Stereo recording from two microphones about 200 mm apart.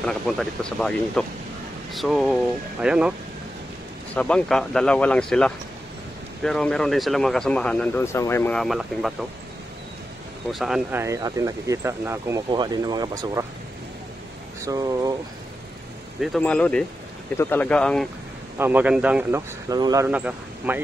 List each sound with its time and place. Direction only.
0.0 s speech: centre (ahead or behind)
10.5 s speech: centre (ahead or behind)
11.0 s speech: 15° right (ahead or behind)
14.6 s speech: 20° right (ahead or behind)
16.2 s speech: centre (ahead or behind)
18.6 s speech: 10° right (ahead or behind)
19.7 s speech: 20° right (ahead or behind)
20.1 s speech: 5° right (ahead or behind)